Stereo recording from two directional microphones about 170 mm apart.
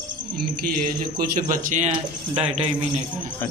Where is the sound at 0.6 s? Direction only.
55° right (ahead or behind); by 2.6 s 35° right (ahead or behind).